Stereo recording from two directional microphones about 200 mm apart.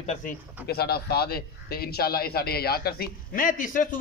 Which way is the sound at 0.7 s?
50° left (ahead or behind).